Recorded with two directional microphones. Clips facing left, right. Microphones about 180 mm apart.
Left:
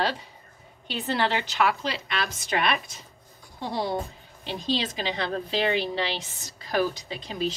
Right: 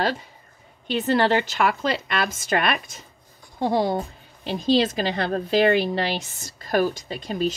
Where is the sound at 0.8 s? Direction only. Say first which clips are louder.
Right 7 dB; 50° right (ahead or behind).